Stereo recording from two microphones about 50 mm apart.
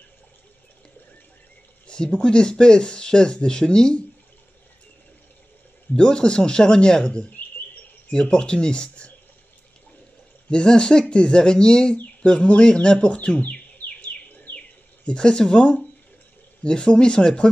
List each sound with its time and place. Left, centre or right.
1.9 s speech: centre
5.9 s speech: centre
10.5 s speech: centre
13.4 s bird: left
15.0 s speech: centre